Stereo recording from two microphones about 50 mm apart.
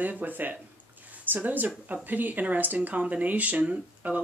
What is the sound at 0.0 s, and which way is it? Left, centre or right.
Speech, right.